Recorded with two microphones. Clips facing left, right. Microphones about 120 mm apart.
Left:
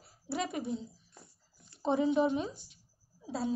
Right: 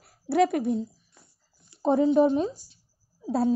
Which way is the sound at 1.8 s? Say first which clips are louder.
Right 8 dB; 40° right (ahead or behind).